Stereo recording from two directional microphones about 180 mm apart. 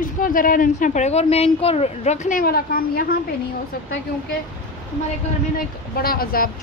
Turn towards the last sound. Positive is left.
turn(degrees=55)  # may be behind; listen again after turning